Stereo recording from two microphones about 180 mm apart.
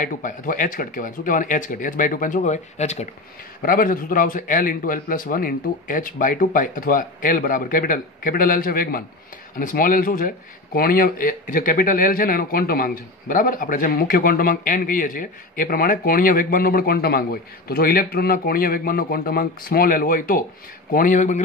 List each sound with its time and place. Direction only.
0.0 s speech: 50° left (ahead or behind)
3.6 s speech: 50° left (ahead or behind)